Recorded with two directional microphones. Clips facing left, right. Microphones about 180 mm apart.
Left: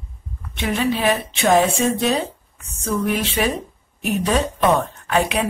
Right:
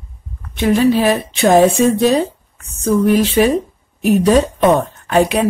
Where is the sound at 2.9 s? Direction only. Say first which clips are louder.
Right 9 dB; 35° right (ahead or behind).